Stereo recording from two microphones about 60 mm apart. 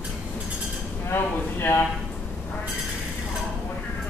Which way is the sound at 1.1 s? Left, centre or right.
Left.